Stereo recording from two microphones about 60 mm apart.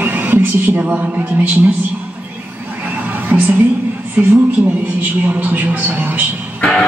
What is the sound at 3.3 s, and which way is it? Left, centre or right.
Music, right.